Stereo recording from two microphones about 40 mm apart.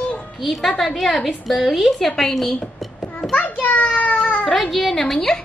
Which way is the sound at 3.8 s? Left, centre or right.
Left.